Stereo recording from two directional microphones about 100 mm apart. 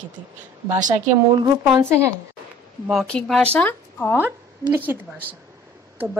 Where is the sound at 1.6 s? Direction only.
25° right (ahead or behind).